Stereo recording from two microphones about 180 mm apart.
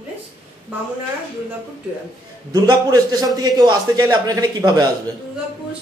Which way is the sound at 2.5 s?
20° right (ahead or behind).